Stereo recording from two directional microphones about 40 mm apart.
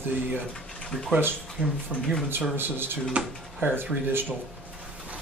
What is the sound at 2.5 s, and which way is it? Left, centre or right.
Speech, right.